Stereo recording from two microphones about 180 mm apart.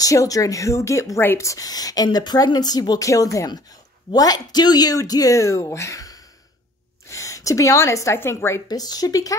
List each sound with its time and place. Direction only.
0.0 s a woman's voice: 20° left (ahead or behind)